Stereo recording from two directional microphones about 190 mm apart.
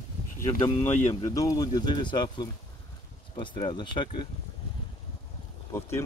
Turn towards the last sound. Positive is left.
turn(degrees=15)  # may be behind; listen again after turning